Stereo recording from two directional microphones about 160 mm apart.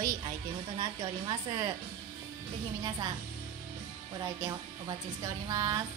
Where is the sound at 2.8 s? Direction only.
25° right (ahead or behind).